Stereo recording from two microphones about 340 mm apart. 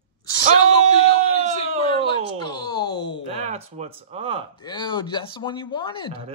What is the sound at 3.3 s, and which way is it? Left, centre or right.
Speech, centre.